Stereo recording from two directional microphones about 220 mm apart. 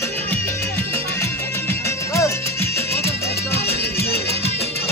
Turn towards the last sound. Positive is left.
turn(degrees=10)  # may be behind; listen again after turning